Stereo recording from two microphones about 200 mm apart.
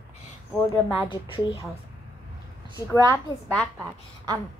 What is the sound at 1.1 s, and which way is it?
Speech, 25° left (ahead or behind).